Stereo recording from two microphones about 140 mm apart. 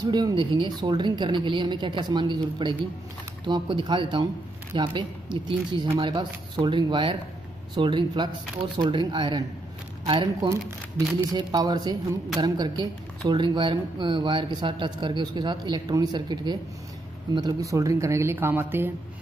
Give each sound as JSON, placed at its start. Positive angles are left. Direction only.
{"t": 0.0, "sound": "speech", "side_deg": -30}